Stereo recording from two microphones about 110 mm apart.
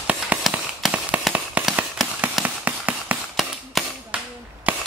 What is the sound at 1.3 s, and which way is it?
Fireworks, 10° right (ahead or behind).